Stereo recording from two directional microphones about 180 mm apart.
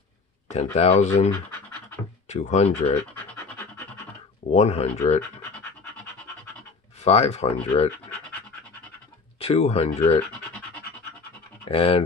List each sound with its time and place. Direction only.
0.5 s speech: 40° left (ahead or behind)
3.4 s scratch: 10° left (ahead or behind)
4.5 s speech: 40° left (ahead or behind)
7.1 s speech: 35° left (ahead or behind)
9.4 s speech: 35° left (ahead or behind)
11.7 s speech: 30° left (ahead or behind)